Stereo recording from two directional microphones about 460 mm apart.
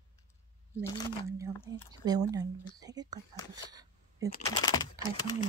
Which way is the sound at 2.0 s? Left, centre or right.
Centre.